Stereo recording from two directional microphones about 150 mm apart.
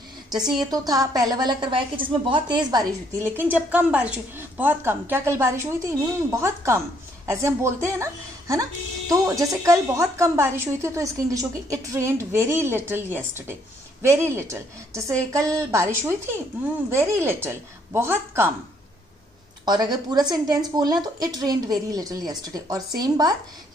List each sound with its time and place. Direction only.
0.3 s a woman's voice: centre (ahead or behind)
0.7 s a woman's voice: 25° right (ahead or behind)
3.2 s a woman's voice: 15° right (ahead or behind)
19.6 s a woman's voice: 30° right (ahead or behind)